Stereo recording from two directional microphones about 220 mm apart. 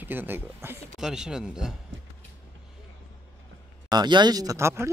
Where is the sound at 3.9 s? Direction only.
20° right (ahead or behind).